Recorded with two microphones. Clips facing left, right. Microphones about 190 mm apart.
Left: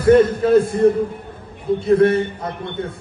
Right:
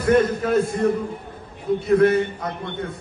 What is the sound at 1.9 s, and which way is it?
A man's voice, 30° left (ahead or behind).